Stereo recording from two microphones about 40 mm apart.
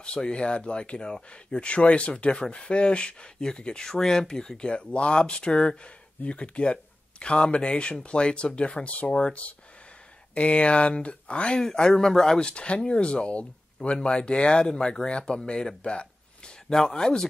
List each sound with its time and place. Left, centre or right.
0.0 s speech: left
4.6 s speech: left
11.6 s speech: centre
12.4 s speech: left